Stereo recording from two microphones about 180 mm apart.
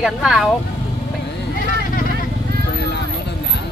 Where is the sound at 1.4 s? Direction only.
55° left (ahead or behind).